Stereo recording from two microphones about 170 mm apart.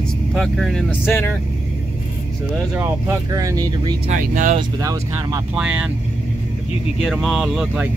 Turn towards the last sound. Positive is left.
turn(degrees=0)  # may be behind; listen again after turning